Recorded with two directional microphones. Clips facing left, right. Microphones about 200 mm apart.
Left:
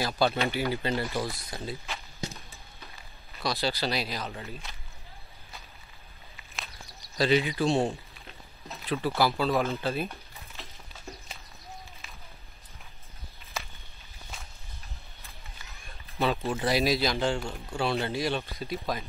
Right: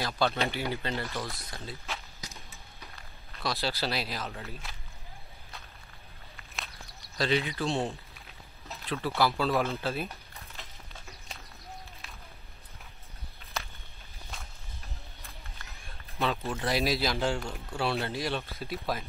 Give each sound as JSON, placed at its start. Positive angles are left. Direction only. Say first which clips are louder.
{"t": 0.0, "sound": "speech", "louder": "left 2 dB", "side_deg": 5}
{"t": 2.2, "sound": "a sound", "louder": "left 10 dB", "side_deg": 30}
{"t": 3.0, "sound": "speech", "louder": "left 2 dB", "side_deg": 0}
{"t": 7.2, "sound": "speech", "louder": "left 4 dB", "side_deg": 5}
{"t": 9.0, "sound": "speech", "louder": "left 1 dB", "side_deg": 0}
{"t": 13.5, "sound": "walk", "louder": "even", "side_deg": 0}
{"t": 16.2, "sound": "speech", "louder": "left 3 dB", "side_deg": 0}